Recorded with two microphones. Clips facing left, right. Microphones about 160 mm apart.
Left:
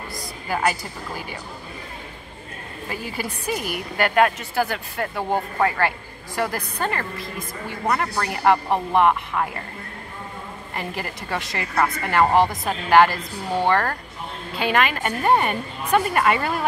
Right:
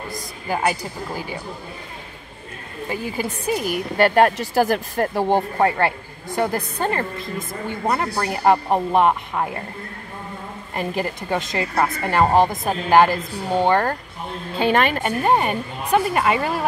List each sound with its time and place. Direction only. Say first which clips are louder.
0.5 s speech: right 1 dB; 15° right (ahead or behind)
2.9 s a woman's voice: right 4 dB; 25° right (ahead or behind)
8.5 s speech: right 2 dB; 15° right (ahead or behind)
10.8 s a woman's voice: right 6 dB; 20° right (ahead or behind)
14.6 s a woman's voice: right 3 dB; 30° right (ahead or behind)
15.0 s speech: right 1 dB; 15° right (ahead or behind)